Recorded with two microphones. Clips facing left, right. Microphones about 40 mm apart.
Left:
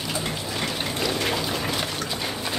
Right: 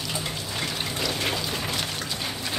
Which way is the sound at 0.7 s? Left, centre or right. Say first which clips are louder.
Left 3 dB; centre.